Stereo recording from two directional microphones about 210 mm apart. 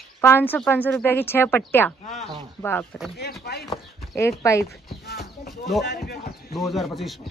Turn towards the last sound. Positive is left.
turn(degrees=0)  # may be behind; listen again after turning